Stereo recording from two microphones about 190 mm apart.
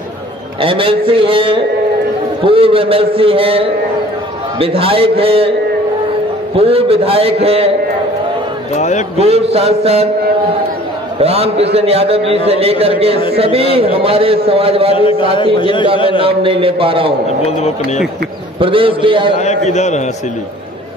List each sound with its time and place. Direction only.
0.6 s a man's voice: 30° right (ahead or behind)
6.5 s a man's voice: 30° right (ahead or behind)
8.7 s a man's voice: 40° left (ahead or behind)
9.1 s a man's voice: 30° right (ahead or behind)
11.1 s a man's voice: 30° right (ahead or behind)
15.0 s a man's voice: 30° left (ahead or behind)
16.2 s a man's voice: 30° right (ahead or behind)
17.5 s a man's voice: 35° left (ahead or behind)
18.6 s a man's voice: 25° right (ahead or behind)
19.3 s a man's voice: 35° left (ahead or behind)